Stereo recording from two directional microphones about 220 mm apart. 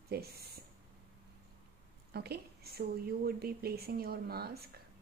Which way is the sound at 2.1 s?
45° right (ahead or behind).